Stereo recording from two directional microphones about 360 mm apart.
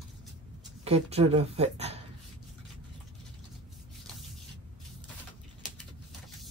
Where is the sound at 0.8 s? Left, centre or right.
Centre.